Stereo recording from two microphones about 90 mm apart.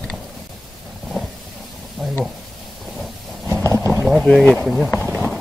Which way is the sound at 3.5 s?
30° right (ahead or behind).